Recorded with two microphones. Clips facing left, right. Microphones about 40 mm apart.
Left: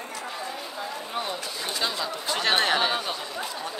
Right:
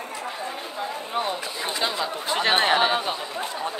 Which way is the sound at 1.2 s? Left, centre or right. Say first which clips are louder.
Right 5 dB; right.